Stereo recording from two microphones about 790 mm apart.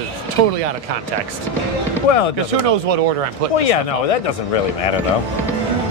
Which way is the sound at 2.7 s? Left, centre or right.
Right.